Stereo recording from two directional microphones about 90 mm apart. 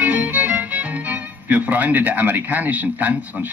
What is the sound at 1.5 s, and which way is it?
A man's voice, 15° right (ahead or behind).